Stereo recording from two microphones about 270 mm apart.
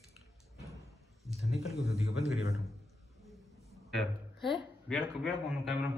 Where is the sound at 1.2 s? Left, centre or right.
Centre.